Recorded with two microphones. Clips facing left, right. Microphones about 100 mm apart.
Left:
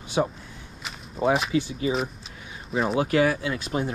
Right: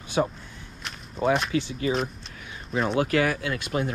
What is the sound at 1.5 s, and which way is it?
Speech, 25° left (ahead or behind).